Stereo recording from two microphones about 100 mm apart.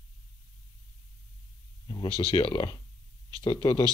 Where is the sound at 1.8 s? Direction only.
40° left (ahead or behind).